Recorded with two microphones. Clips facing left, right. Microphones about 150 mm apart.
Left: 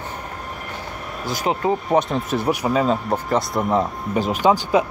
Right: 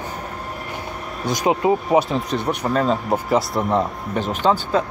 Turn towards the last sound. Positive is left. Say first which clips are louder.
# left 2 dB
turn(degrees=10)  # may be behind; listen again after turning